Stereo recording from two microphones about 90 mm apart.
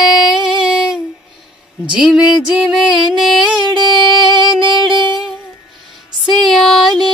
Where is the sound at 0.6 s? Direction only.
5° right (ahead or behind).